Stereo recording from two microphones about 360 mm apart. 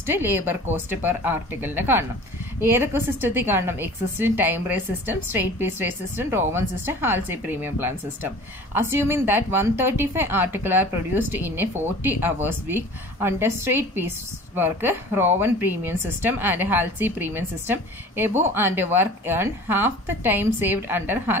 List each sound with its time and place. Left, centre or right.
0.0 s speech: centre